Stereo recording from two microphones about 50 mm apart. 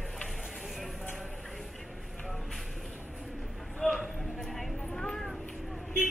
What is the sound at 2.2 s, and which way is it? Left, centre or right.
Vehicle, centre.